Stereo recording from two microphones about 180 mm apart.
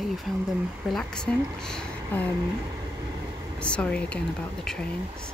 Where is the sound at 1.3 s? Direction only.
5° left (ahead or behind).